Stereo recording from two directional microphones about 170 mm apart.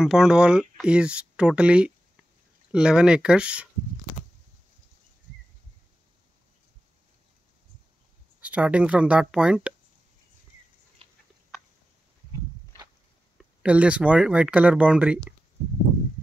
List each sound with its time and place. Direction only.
0.0 s speech: 5° right (ahead or behind)
8.4 s speech: 10° right (ahead or behind)
11.0 s a sound: 35° right (ahead or behind)
13.6 s speech: 5° right (ahead or behind)